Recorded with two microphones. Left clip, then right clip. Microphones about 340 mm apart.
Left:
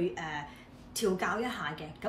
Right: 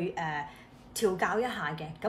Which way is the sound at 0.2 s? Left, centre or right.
Right.